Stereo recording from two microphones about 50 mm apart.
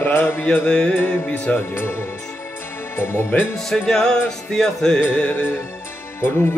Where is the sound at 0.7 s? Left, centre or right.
Left.